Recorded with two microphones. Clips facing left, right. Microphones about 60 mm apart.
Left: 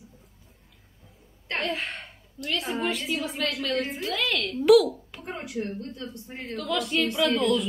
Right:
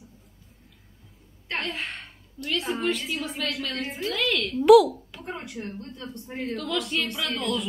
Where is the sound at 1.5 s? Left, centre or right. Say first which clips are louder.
Left 2 dB; centre.